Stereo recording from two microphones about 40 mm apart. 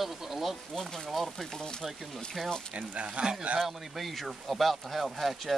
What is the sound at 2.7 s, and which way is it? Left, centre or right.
Speech, right.